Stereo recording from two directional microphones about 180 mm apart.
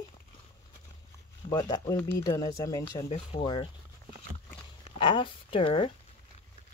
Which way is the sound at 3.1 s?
35° left (ahead or behind).